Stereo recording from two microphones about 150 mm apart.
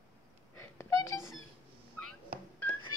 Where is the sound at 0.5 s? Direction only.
20° left (ahead or behind).